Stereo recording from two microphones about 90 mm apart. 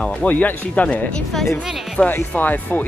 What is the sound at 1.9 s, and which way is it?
Speech, 20° left (ahead or behind).